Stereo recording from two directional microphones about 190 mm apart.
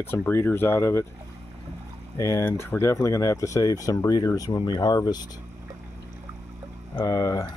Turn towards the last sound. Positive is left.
turn(degrees=15)  # may be behind; listen again after turning